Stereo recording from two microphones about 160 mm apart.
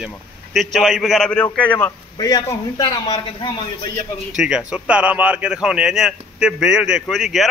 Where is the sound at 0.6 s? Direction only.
Centre (ahead or behind).